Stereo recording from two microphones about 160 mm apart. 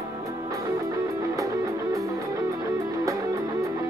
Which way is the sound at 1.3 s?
20° right (ahead or behind).